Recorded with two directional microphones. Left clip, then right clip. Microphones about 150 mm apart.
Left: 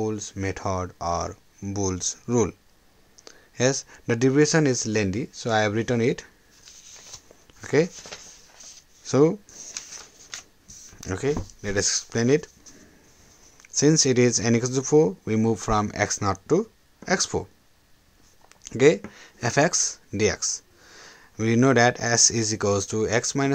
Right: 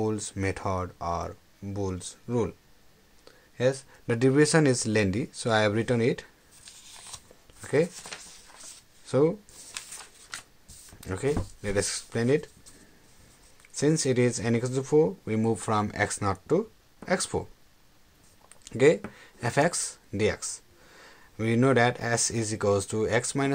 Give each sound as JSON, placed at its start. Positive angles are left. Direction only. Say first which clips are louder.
{"t": 0.0, "sound": "speech", "louder": "left 1 dB", "side_deg": 10}
{"t": 3.3, "sound": "a sound", "louder": "left 3 dB", "side_deg": 40}
{"t": 4.2, "sound": "speech", "louder": "left 2 dB", "side_deg": 15}
{"t": 7.6, "sound": "speech", "louder": "left 3 dB", "side_deg": 35}
{"t": 9.0, "sound": "speech", "louder": "left 4 dB", "side_deg": 45}
{"t": 11.0, "sound": "speech", "louder": "left 3 dB", "side_deg": 30}
{"t": 13.7, "sound": "speech", "louder": "left 5 dB", "side_deg": 35}
{"t": 18.5, "sound": "speech", "louder": "left 3 dB", "side_deg": 25}